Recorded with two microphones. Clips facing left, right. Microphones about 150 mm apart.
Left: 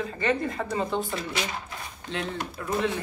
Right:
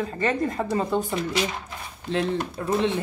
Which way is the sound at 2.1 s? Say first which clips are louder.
Right 7 dB; 35° right (ahead or behind).